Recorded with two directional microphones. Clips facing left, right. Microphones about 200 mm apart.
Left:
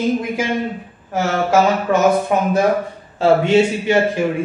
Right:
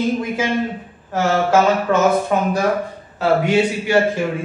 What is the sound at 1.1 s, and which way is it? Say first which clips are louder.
Speech: right 1 dB; 10° left (ahead or behind).